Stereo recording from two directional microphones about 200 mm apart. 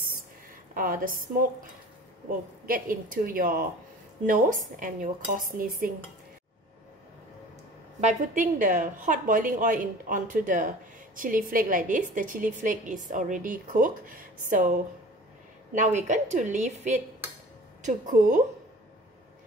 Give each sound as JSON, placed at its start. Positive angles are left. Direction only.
{"t": 0.7, "sound": "a woman's voice", "side_deg": -45}
{"t": 8.0, "sound": "a woman's voice", "side_deg": -35}